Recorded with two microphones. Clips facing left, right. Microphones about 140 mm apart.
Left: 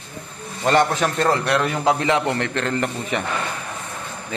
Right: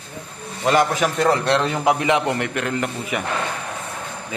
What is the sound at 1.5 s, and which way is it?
A man's voice, 25° right (ahead or behind).